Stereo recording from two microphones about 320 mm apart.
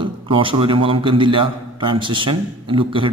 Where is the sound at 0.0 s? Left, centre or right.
Centre.